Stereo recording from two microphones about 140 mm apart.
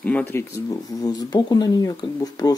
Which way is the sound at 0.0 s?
10° left (ahead or behind).